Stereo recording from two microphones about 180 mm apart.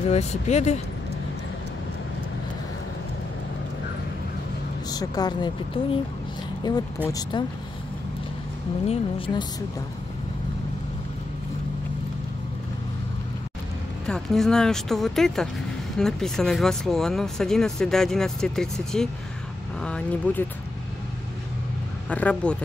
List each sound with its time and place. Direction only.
0.1 s speech: 40° left (ahead or behind)
4.9 s a woman's voice: 20° left (ahead or behind)
8.8 s a woman's voice: 30° left (ahead or behind)
14.0 s speech: 5° left (ahead or behind)
22.1 s speech: 5° left (ahead or behind)